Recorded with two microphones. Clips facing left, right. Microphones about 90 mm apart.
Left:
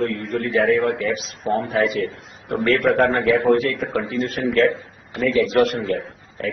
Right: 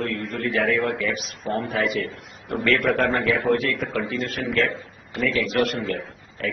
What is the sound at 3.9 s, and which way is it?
Speech, 25° left (ahead or behind).